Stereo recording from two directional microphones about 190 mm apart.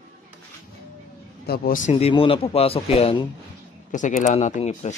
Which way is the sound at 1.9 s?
30° left (ahead or behind).